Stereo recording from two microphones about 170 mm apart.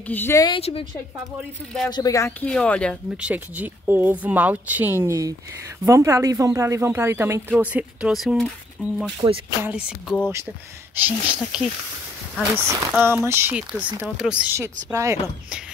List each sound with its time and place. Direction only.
0.0 s speech: 10° left (ahead or behind)
0.6 s a woman's voice: 35° left (ahead or behind)
1.9 s speech: 25° left (ahead or behind)
2.4 s speech: 5° left (ahead or behind)
3.2 s speech: 10° right (ahead or behind)
9.2 s speech: 30° right (ahead or behind)
9.6 s speech: 5° right (ahead or behind)
12.5 s speech: 15° right (ahead or behind)